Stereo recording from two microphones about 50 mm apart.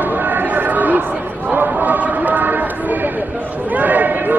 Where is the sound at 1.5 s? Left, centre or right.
Right.